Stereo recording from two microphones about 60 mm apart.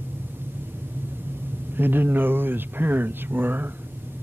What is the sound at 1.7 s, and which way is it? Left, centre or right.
A man's voice, right.